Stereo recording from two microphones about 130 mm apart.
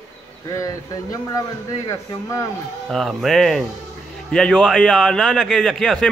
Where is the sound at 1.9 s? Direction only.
25° left (ahead or behind).